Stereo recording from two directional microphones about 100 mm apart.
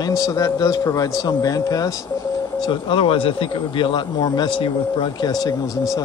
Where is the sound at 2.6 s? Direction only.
55° left (ahead or behind).